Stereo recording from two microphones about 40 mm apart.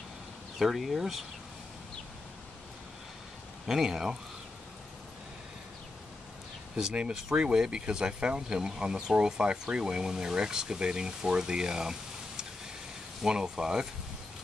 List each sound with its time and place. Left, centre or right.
0.6 s speech: centre
3.6 s speech: centre
6.8 s speech: right